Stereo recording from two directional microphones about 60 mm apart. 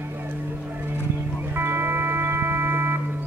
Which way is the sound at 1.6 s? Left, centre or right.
Right.